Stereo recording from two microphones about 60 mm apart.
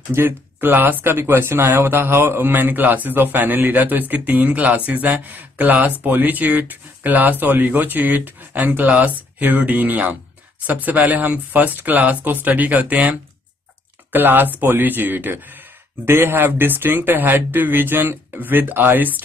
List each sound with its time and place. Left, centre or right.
0.1 s speech: right
14.1 s speech: right